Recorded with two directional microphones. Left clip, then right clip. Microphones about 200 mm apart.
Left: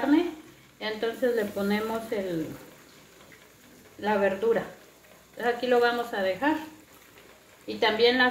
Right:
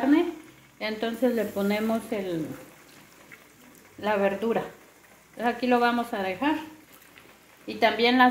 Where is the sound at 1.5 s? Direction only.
50° right (ahead or behind).